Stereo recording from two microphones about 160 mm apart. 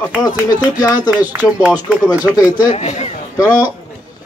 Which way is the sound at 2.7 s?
40° left (ahead or behind).